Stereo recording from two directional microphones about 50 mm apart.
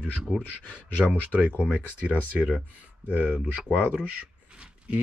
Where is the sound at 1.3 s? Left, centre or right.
Right.